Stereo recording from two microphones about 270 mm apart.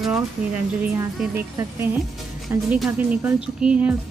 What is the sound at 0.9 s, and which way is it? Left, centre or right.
Speech, centre.